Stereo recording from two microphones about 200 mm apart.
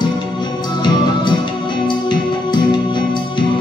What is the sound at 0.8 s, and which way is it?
Music, 25° left (ahead or behind).